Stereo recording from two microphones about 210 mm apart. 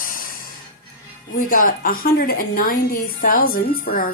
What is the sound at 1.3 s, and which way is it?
A woman's voice, 40° left (ahead or behind).